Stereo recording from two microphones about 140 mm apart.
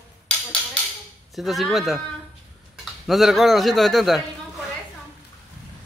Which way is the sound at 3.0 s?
Centre (ahead or behind).